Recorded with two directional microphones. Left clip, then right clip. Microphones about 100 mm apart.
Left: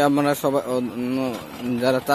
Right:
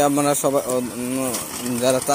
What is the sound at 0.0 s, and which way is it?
Speech, 30° left (ahead or behind).